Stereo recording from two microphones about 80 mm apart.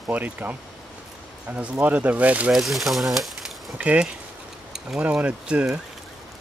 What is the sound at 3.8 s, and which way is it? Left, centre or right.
Speech, centre.